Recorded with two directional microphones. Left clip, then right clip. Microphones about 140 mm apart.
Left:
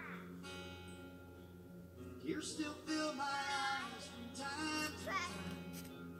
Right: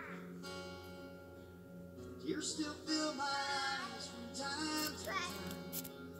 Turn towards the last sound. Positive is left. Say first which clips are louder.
# right 2 dB
turn(degrees=-25)  # may be behind; listen again after turning